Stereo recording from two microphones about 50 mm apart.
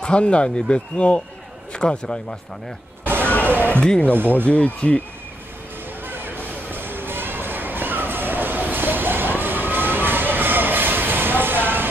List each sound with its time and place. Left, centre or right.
0.0 s a man's voice: left
3.4 s speech: right
3.8 s speech: centre
4.5 s speech: left
6.0 s a sound: right